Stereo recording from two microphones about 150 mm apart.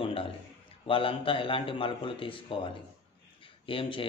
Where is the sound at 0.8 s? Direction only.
35° left (ahead or behind).